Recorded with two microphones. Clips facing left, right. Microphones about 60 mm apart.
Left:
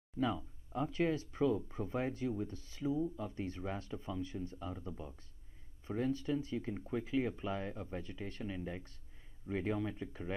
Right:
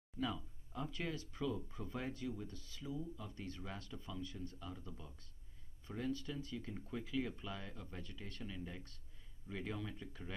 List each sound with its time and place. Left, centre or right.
0.2 s speech: left